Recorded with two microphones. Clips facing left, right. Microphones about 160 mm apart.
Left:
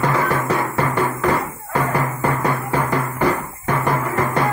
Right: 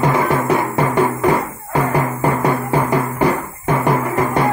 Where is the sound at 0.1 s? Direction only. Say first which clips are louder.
Right 4 dB; 15° right (ahead or behind).